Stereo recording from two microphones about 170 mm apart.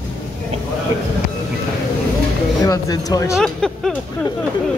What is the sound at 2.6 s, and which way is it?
Speech, 20° left (ahead or behind).